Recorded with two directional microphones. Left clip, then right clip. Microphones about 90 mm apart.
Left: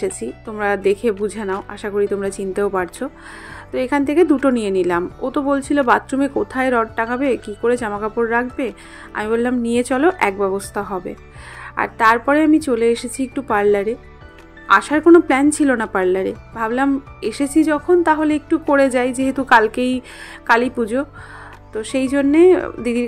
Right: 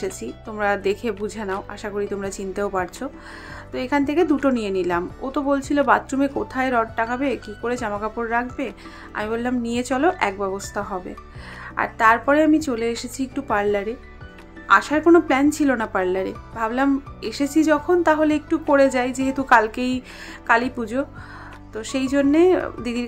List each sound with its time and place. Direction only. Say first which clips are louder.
0.0 s a woman's voice: left 5 dB; 35° left (ahead or behind)
17.6 s a woman's voice: left 3 dB; 25° left (ahead or behind); by 23.0 s 45° left (ahead or behind)